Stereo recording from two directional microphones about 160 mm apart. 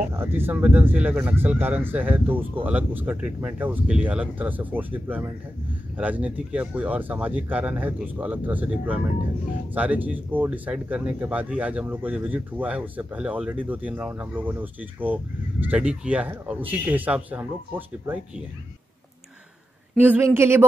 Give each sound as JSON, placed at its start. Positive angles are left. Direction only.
{"t": 0.1, "sound": "speech", "side_deg": -15}
{"t": 20.0, "sound": "speech", "side_deg": -10}